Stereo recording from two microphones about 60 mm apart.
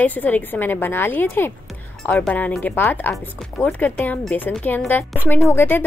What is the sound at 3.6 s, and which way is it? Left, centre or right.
A woman's voice, left.